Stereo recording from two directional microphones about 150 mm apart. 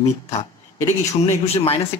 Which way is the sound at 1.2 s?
45° left (ahead or behind).